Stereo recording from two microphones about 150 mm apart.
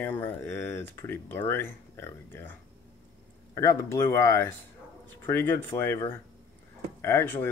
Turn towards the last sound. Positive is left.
turn(degrees=15)  # may be behind; listen again after turning